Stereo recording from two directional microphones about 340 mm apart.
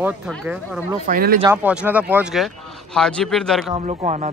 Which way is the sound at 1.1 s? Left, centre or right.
Right.